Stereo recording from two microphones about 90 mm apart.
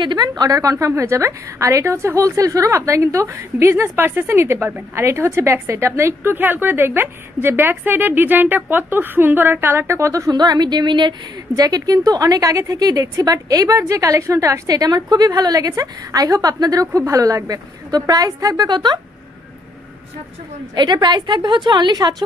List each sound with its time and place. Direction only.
0.0 s a woman's voice: 55° right (ahead or behind)
0.3 s a woman's voice: 40° right (ahead or behind)
10.3 s a woman's voice: 50° right (ahead or behind)
20.7 s a woman's voice: 55° right (ahead or behind)